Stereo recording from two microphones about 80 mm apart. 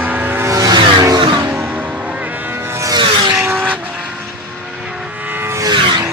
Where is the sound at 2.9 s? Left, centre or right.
Right.